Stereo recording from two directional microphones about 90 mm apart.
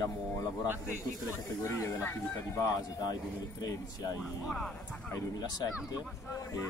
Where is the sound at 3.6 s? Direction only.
40° left (ahead or behind).